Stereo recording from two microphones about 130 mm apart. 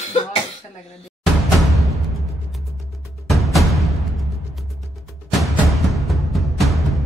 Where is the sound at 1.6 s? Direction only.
Centre (ahead or behind).